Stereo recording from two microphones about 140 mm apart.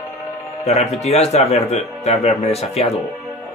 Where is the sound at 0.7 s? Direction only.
50° left (ahead or behind).